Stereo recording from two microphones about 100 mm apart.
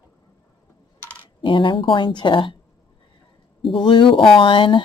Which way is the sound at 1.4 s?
55° left (ahead or behind).